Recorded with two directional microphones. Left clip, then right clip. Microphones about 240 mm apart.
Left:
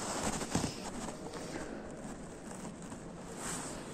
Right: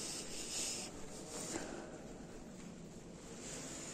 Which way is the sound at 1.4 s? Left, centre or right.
Right.